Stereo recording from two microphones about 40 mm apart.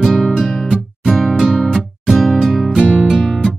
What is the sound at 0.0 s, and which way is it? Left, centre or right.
Music, centre.